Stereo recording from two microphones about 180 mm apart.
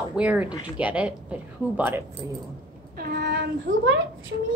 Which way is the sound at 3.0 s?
60° right (ahead or behind).